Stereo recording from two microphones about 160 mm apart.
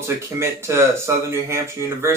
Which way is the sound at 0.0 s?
15° right (ahead or behind).